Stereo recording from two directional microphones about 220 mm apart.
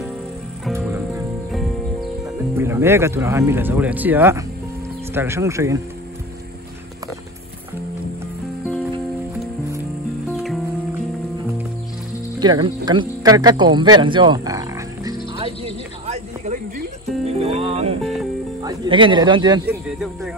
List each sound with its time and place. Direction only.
1.5 s music: centre (ahead or behind)
2.5 s speech: 10° right (ahead or behind)
10.3 s music: centre (ahead or behind)
12.4 s speech: 20° right (ahead or behind)
15.3 s music: 25° right (ahead or behind)
18.0 s music: centre (ahead or behind)
18.6 s speech: 20° right (ahead or behind)
19.6 s speech: 10° right (ahead or behind)